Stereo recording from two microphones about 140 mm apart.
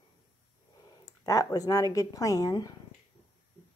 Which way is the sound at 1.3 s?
25° left (ahead or behind).